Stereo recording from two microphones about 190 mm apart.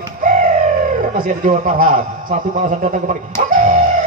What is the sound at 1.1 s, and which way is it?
A man's voice, 45° right (ahead or behind).